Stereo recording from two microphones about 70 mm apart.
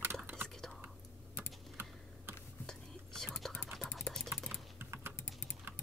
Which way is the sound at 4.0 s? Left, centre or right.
Centre.